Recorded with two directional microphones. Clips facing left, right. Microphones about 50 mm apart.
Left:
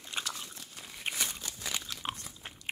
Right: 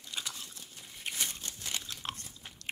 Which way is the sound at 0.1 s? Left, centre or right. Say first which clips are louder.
Left 3 dB; left.